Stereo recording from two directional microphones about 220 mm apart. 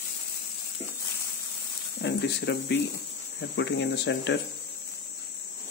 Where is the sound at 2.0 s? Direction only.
50° left (ahead or behind).